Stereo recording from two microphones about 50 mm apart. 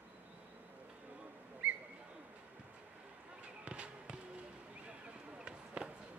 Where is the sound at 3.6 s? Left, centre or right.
Right.